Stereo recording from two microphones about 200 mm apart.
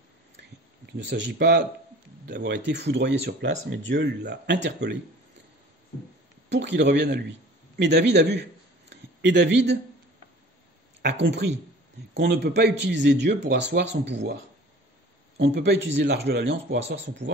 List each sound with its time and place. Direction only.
1.0 s speech: 60° right (ahead or behind)
6.5 s speech: 60° right (ahead or behind)
8.8 s a sound: 60° right (ahead or behind)
11.0 s speech: 60° right (ahead or behind)